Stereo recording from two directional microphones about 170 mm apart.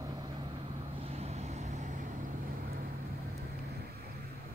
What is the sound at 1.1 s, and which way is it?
Vehicle, 40° right (ahead or behind).